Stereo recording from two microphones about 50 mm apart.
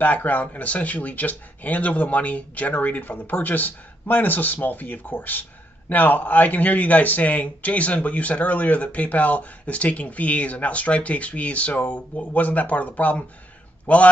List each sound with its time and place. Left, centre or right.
0.0 s speech: left